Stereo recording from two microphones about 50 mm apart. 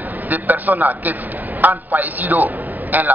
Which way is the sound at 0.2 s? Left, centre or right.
Right.